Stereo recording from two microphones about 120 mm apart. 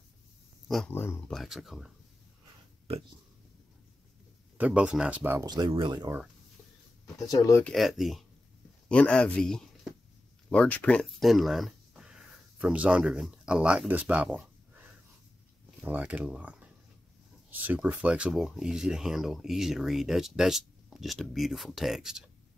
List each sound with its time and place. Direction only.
0.8 s speech: 20° left (ahead or behind)
1.3 s speech: centre (ahead or behind)
2.9 s speech: 55° right (ahead or behind)
4.6 s speech: 10° right (ahead or behind)
5.4 s speech: 35° right (ahead or behind)
7.2 s speech: 30° left (ahead or behind)
7.6 s speech: centre (ahead or behind)
8.8 s speech: 10° left (ahead or behind)